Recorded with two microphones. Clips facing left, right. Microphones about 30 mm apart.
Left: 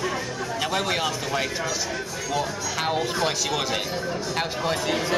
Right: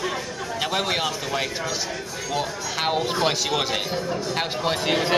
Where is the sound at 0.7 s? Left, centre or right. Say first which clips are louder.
Right 1 dB; centre.